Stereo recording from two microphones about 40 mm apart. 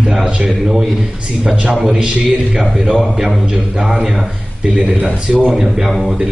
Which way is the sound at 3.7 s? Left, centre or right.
Centre.